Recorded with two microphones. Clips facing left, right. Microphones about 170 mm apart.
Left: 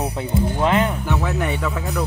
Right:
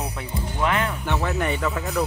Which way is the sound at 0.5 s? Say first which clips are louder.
Left 3 dB; 25° left (ahead or behind).